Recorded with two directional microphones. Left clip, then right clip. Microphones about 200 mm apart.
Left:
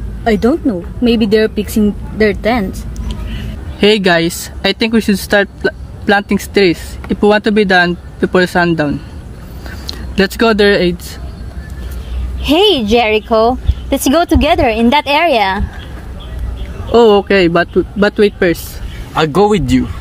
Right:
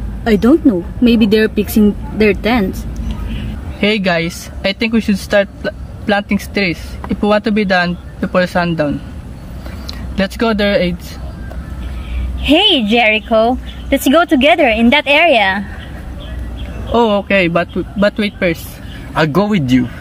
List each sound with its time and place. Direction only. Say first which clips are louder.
0.2 s speech: right 1 dB; 5° left (ahead or behind)
3.3 s speech: left 4 dB; 35° left (ahead or behind)
12.9 s speech: left 1 dB; 30° left (ahead or behind)
16.9 s speech: left 4 dB; 40° left (ahead or behind)
19.1 s speech: left 4 dB; 15° left (ahead or behind)